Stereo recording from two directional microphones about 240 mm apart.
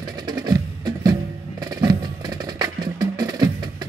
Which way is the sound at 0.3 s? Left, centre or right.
Centre.